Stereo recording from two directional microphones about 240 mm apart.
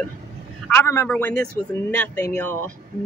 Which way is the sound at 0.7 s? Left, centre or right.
Centre.